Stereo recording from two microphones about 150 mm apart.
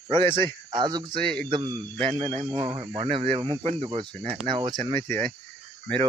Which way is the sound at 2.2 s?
50° right (ahead or behind).